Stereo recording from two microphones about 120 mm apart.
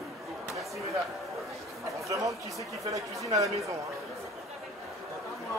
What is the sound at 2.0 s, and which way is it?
Speech, 25° right (ahead or behind).